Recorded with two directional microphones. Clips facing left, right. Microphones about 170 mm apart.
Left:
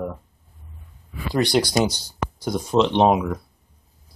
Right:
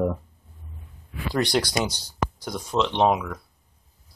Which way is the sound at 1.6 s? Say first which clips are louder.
Left 6 dB; 5° left (ahead or behind).